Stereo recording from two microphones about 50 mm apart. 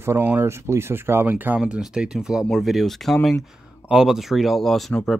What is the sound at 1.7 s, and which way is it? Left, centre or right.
Speech, centre.